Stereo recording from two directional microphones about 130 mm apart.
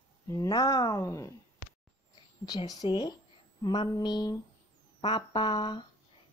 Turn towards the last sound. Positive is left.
turn(degrees=40)  # may be behind; listen again after turning